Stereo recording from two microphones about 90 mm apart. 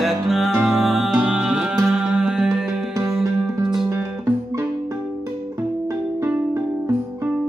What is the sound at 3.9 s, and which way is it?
Music, 30° right (ahead or behind).